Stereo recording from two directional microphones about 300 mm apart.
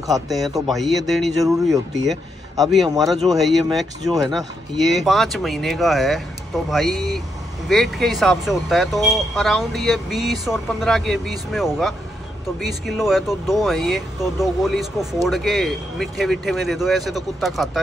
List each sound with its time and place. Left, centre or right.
0.1 s speech: centre
2.6 s speech: centre